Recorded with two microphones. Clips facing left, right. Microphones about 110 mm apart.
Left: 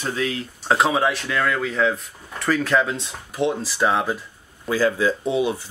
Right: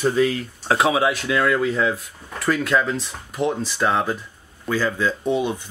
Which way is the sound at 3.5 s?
5° left (ahead or behind).